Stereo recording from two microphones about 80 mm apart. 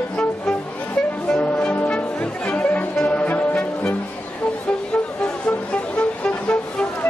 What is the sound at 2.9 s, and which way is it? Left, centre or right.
Music, centre.